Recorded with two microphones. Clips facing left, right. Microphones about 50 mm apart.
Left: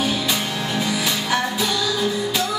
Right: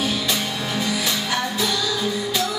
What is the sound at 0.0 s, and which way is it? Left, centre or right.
Music, centre.